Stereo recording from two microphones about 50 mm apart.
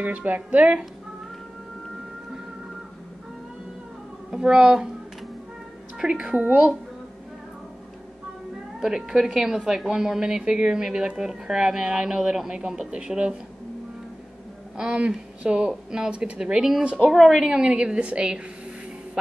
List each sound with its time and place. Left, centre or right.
0.0 s speech: right
4.3 s speech: centre
5.9 s a woman's voice: centre
8.8 s speech: centre
14.8 s a woman's voice: centre
17.1 s a woman's voice: centre
17.5 s a woman's voice: centre